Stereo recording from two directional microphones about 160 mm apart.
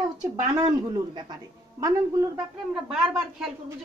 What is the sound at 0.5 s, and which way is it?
A woman's voice, 25° right (ahead or behind).